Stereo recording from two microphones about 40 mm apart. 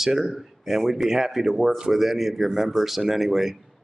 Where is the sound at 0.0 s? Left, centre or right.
Centre.